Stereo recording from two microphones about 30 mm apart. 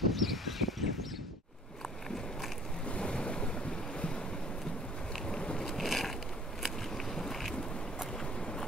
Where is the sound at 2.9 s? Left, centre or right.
Left.